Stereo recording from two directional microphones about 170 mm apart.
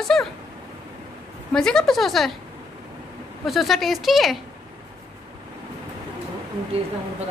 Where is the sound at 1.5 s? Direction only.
5° left (ahead or behind).